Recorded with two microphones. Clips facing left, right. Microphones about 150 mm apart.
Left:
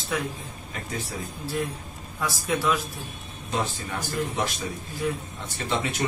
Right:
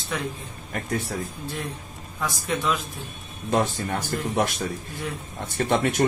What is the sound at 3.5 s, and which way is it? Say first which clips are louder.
Speech: right 6 dB; 55° right (ahead or behind).